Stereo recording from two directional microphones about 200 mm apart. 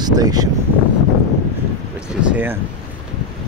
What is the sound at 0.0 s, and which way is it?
Speech, 20° right (ahead or behind).